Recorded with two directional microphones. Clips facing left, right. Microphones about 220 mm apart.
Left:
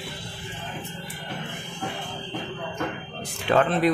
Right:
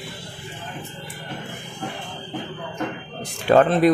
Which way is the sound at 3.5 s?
40° right (ahead or behind).